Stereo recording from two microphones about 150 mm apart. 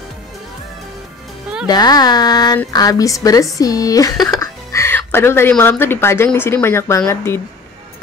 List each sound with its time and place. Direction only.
1.7 s a woman's voice: 25° left (ahead or behind)